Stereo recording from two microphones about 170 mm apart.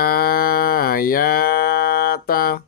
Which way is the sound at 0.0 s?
60° left (ahead or behind).